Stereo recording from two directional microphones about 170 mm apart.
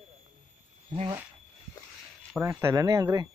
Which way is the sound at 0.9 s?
30° right (ahead or behind).